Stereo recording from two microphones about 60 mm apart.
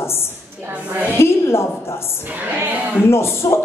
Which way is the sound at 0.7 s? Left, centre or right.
Right.